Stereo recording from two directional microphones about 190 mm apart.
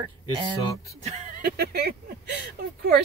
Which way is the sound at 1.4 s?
55° right (ahead or behind).